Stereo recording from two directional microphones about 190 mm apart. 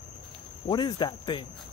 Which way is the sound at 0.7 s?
25° left (ahead or behind).